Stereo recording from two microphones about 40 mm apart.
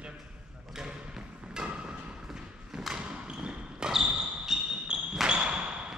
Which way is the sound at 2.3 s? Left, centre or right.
Centre.